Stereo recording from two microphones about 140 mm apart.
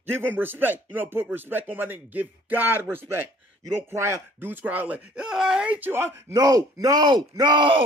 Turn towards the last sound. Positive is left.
turn(degrees=-35)  # may be behind; listen again after turning